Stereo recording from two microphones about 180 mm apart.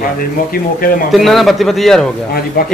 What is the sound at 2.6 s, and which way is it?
Speech, 55° left (ahead or behind).